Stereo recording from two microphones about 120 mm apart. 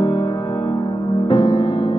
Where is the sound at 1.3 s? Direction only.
40° left (ahead or behind).